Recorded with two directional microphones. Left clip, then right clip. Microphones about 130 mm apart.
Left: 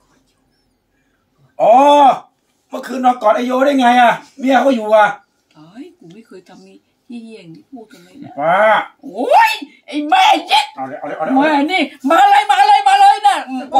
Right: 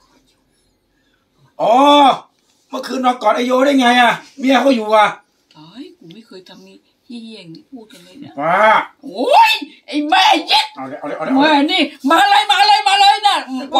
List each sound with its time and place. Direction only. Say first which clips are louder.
1.6 s groan: left 3 dB; 10° left (ahead or behind)
2.7 s a man's voice: left 2 dB; 15° left (ahead or behind)
5.5 s a sound: even; 10° right (ahead or behind)
6.1 s speech: right 1 dB; 10° right (ahead or behind)
7.9 s speech: left 1 dB; 10° left (ahead or behind)
9.0 s speech: right 1 dB; centre (ahead or behind)
10.7 s speech: left 1 dB; 15° left (ahead or behind)
11.3 s speech: right 1 dB; 5° right (ahead or behind)